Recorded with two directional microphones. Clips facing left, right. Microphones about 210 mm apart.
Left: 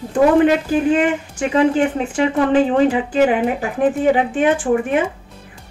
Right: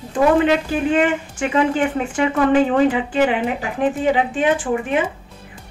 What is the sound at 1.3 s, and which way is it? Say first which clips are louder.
Speech: left 4 dB; 35° left (ahead or behind).